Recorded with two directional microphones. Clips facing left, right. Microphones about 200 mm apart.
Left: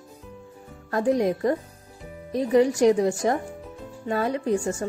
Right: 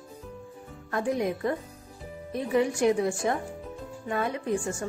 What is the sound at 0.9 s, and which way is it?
Speech, 35° left (ahead or behind).